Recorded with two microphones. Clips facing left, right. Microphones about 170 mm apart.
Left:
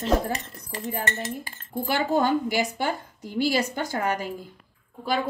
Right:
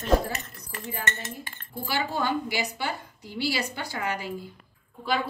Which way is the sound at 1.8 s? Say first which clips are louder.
Left 5 dB; 50° left (ahead or behind).